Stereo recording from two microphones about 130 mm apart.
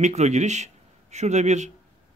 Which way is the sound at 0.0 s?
60° right (ahead or behind).